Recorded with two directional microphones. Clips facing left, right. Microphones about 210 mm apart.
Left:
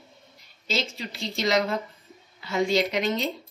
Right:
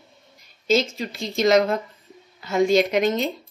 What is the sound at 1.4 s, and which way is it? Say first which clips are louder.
A woman's voice: right 7 dB; 50° right (ahead or behind).